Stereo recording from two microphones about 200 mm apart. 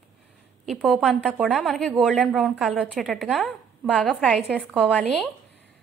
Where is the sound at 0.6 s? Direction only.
Centre (ahead or behind).